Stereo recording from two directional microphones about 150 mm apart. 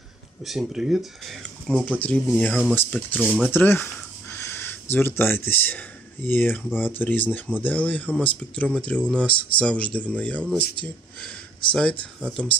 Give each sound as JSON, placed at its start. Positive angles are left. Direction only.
{"t": 0.4, "sound": "speech", "side_deg": 0}
{"t": 3.3, "sound": "speech", "side_deg": -5}
{"t": 3.5, "sound": "speech", "side_deg": 15}